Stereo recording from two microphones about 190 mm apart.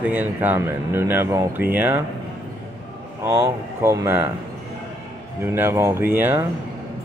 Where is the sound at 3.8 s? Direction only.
15° right (ahead or behind).